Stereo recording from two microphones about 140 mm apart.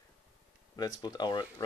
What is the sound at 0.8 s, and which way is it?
Speech, 30° left (ahead or behind).